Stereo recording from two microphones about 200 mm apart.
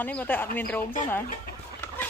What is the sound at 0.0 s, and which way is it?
Speech, 10° left (ahead or behind).